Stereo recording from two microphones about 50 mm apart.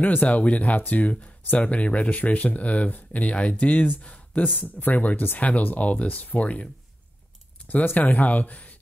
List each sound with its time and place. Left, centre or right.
0.0 s speech: left